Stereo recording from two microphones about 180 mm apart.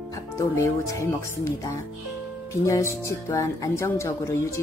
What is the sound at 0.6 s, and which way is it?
Speech, 15° left (ahead or behind).